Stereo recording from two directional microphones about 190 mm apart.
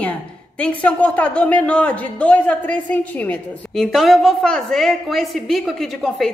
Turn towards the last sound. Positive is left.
turn(degrees=0)  # may be behind; listen again after turning